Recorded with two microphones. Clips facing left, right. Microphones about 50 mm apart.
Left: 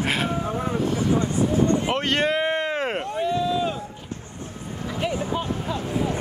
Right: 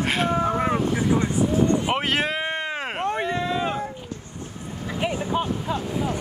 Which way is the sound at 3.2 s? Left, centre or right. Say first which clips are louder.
Left 2 dB; right.